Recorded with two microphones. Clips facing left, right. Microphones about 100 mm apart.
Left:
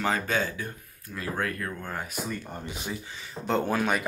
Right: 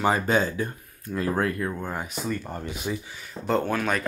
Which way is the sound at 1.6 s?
15° right (ahead or behind).